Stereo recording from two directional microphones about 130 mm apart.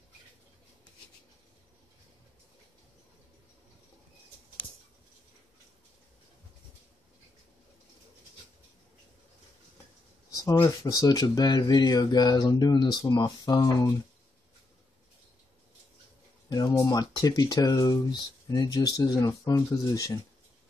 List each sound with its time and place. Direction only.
10.3 s speech: 25° left (ahead or behind)
16.4 s speech: 30° left (ahead or behind)